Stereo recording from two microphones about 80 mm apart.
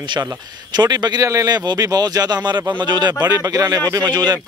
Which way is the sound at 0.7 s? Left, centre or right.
Right.